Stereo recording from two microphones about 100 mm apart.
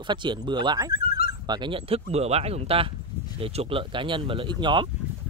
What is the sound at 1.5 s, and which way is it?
Speech, 55° right (ahead or behind).